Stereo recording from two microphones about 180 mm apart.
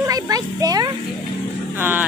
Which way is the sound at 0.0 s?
20° right (ahead or behind).